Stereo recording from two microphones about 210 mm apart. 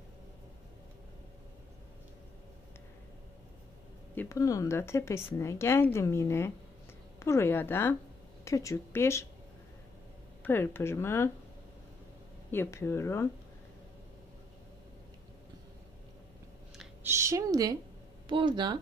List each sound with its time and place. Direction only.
4.1 s speech: 10° left (ahead or behind)
10.4 s speech: 10° left (ahead or behind)
12.4 s speech: 10° left (ahead or behind)
16.7 s a sound: 10° right (ahead or behind)
18.3 s speech: 20° right (ahead or behind)